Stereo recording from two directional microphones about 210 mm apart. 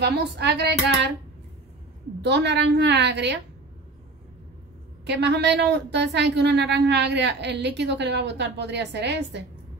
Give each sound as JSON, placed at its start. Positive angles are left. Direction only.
{"t": 0.0, "sound": "speech", "side_deg": -50}
{"t": 2.2, "sound": "a woman's voice", "side_deg": -55}
{"t": 5.0, "sound": "a woman's voice", "side_deg": -55}